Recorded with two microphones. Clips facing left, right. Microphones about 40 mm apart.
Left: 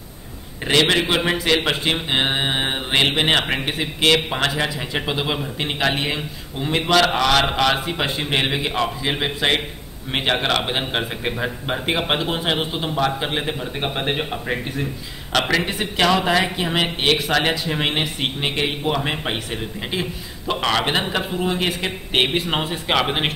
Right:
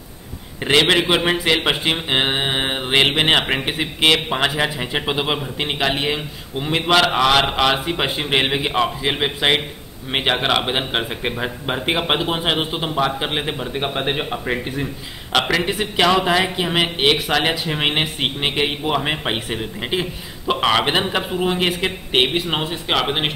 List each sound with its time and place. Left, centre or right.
0.7 s a man's voice: centre
5.8 s a man's voice: centre
13.7 s a man's voice: centre